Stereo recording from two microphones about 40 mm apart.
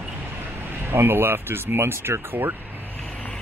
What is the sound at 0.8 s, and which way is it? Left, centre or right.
Speech, right.